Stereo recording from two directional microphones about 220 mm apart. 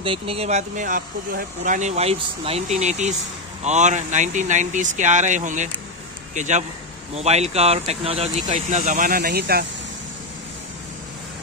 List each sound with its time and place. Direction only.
0.0 s speech: 25° right (ahead or behind); by 9.7 s 45° right (ahead or behind)